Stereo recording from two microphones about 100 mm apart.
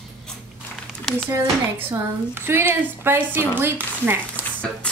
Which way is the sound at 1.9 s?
25° right (ahead or behind).